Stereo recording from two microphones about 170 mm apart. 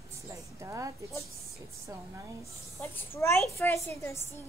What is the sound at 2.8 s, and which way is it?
Speech, 15° left (ahead or behind).